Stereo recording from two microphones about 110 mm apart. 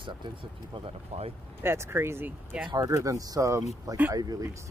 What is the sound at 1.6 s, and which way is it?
Speech, 20° right (ahead or behind).